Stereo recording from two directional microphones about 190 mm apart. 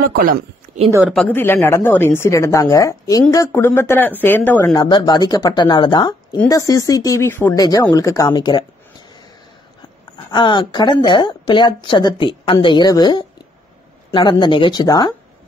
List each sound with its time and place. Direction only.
0.0 s speech: 50° right (ahead or behind)
1.1 s a woman's voice: 10° left (ahead or behind)
4.7 s a woman's voice: 20° left (ahead or behind)
10.3 s a woman's voice: 25° left (ahead or behind)